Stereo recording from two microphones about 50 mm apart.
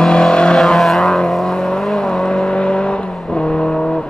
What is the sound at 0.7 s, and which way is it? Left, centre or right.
Vehicle, centre.